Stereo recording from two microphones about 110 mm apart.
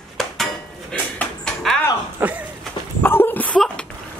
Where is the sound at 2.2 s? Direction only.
15° right (ahead or behind).